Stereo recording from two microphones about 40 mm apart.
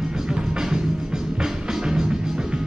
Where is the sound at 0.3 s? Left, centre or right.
Centre.